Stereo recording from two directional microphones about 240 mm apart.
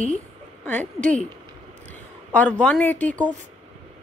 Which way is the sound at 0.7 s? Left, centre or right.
Centre.